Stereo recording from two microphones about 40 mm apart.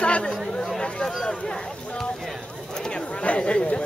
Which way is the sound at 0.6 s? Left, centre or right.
Centre.